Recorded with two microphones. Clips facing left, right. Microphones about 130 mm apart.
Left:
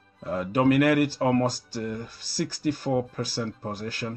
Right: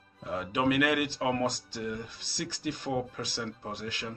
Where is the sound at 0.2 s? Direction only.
45° left (ahead or behind).